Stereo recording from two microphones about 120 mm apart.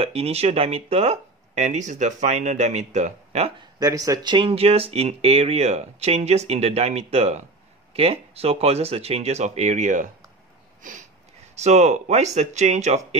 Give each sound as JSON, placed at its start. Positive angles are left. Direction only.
{"t": 0.0, "sound": "speech", "side_deg": -55}
{"t": 3.8, "sound": "speech", "side_deg": -30}
{"t": 10.8, "sound": "a sound", "side_deg": -90}
{"t": 11.5, "sound": "speech", "side_deg": -65}